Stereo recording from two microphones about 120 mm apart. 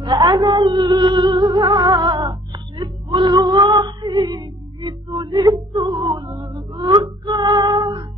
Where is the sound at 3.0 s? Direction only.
40° right (ahead or behind).